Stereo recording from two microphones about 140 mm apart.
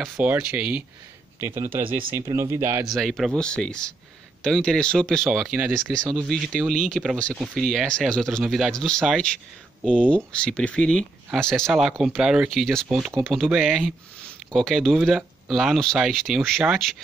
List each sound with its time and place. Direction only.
0.2 s speech: 10° right (ahead or behind)
1.8 s speech: 90° right
2.3 s speech: 20° right (ahead or behind)
2.9 s speech: centre (ahead or behind)